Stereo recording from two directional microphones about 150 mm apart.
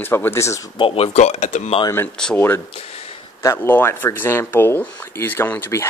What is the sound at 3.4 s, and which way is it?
Speech, 15° left (ahead or behind).